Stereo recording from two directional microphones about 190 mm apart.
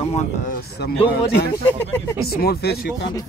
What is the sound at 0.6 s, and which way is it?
Speech, 55° left (ahead or behind).